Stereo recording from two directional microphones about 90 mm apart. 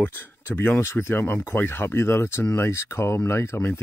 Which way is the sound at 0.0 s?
20° left (ahead or behind).